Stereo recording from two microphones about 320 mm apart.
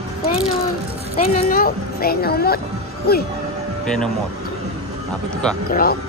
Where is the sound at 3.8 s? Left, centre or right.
Centre.